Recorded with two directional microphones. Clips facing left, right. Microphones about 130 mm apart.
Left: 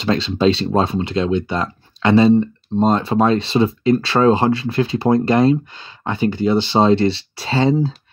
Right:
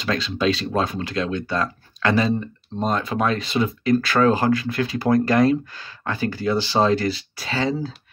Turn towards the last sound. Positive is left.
turn(degrees=30)  # may be behind; listen again after turning